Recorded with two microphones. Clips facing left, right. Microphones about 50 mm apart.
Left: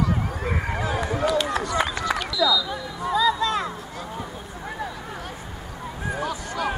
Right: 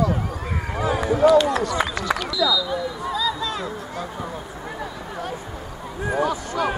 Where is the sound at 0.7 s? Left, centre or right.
Centre.